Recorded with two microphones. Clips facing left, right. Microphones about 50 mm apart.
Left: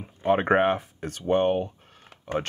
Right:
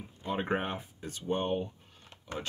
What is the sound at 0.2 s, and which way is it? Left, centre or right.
Speech, left.